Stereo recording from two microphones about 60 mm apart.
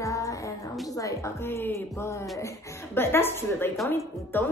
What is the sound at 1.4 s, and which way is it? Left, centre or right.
A woman's voice, left.